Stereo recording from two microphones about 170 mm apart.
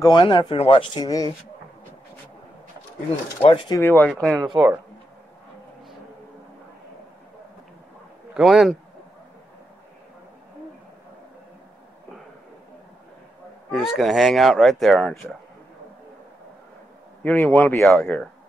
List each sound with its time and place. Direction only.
0.0 s speech: 25° left (ahead or behind)
3.4 s speech: 25° left (ahead or behind)
3.8 s speech: 10° left (ahead or behind)
4.4 s speech: 20° right (ahead or behind)
8.4 s speech: centre (ahead or behind)
13.7 s speech: centre (ahead or behind)
17.2 s speech: 10° left (ahead or behind)